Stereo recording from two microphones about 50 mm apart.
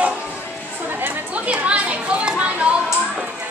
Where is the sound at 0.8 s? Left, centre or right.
Right.